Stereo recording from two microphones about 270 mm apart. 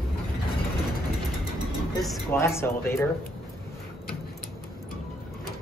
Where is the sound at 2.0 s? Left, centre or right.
Centre.